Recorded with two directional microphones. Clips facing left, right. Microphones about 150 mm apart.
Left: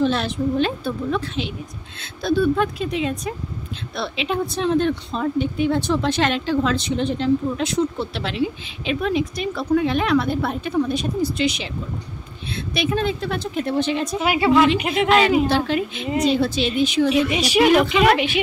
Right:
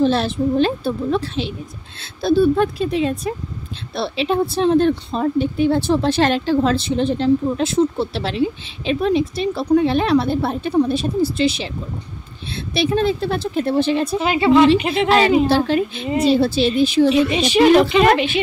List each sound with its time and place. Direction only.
0.0 s a woman's voice: 35° right (ahead or behind)
14.2 s a woman's voice: 5° left (ahead or behind)
15.0 s a woman's voice: 35° right (ahead or behind)
17.1 s a woman's voice: 10° left (ahead or behind)